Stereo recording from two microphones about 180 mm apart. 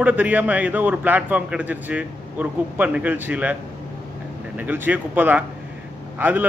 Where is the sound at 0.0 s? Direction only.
10° right (ahead or behind).